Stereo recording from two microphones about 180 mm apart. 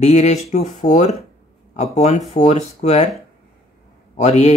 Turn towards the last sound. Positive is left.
turn(degrees=40)  # may be behind; listen again after turning